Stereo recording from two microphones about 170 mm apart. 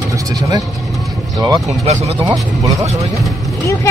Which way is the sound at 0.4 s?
20° right (ahead or behind).